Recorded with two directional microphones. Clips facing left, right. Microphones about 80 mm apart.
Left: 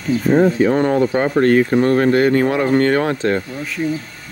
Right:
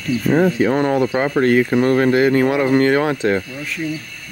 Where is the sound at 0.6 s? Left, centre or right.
Centre.